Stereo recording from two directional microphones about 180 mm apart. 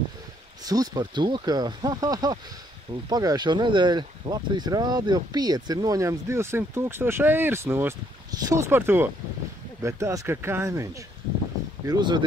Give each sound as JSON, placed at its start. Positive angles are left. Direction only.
{"t": 0.7, "sound": "speech", "side_deg": -20}